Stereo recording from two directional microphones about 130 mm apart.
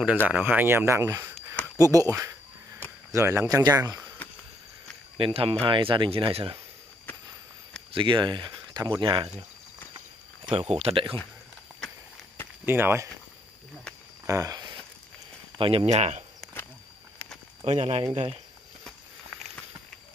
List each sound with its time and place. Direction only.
0.0 s speech: 10° right (ahead or behind); by 4.0 s 30° right (ahead or behind)
5.1 s speech: 45° right (ahead or behind)
7.9 s speech: 40° right (ahead or behind)
10.5 s speech: 50° right (ahead or behind)
12.6 s speech: 15° right (ahead or behind)
14.2 s a sound: 25° right (ahead or behind)
15.5 s speech: 45° right (ahead or behind)
17.6 s speech: 55° right (ahead or behind)
18.9 s walk: 5° left (ahead or behind)